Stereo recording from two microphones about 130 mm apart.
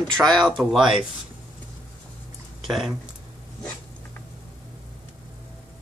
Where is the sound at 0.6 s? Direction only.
5° right (ahead or behind).